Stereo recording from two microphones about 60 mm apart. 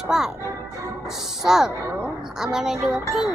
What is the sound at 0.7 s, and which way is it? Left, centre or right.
Music, right.